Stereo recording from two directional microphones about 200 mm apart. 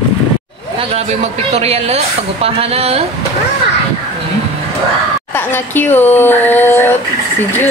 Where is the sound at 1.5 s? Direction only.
30° right (ahead or behind).